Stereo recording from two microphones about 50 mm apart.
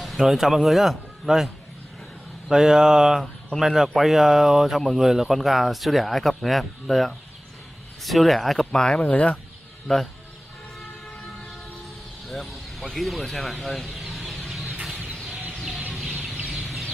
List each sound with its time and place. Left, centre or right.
0.0 s speech: centre
8.9 s speech: left
9.9 s speech: centre
12.3 s speech: centre
14.0 s chicken: centre